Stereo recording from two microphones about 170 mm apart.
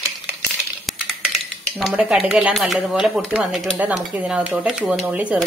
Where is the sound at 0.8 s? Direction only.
Centre (ahead or behind).